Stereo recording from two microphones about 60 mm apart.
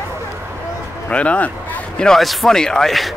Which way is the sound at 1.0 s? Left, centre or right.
Left.